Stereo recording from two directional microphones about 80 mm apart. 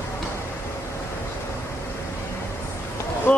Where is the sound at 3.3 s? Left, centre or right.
Left.